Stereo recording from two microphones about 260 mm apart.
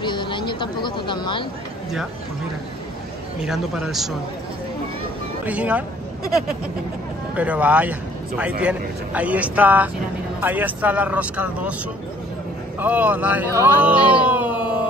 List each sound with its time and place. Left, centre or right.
0.0 s speech: centre
3.4 s speech: centre
5.4 s speech: centre
7.3 s speech: centre
12.7 s speech: centre